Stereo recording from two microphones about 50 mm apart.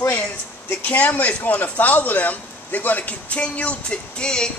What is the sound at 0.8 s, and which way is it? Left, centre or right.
A woman's voice, left.